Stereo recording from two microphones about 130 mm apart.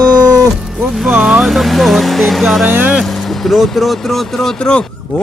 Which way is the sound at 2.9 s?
Centre (ahead or behind).